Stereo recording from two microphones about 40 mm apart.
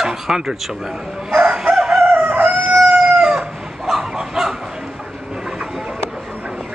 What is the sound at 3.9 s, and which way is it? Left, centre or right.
Bow-wow, centre.